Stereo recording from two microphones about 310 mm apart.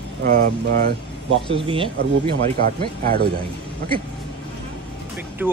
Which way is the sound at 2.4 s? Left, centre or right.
Right.